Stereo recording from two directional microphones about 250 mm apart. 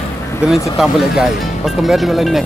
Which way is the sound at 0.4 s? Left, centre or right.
Centre.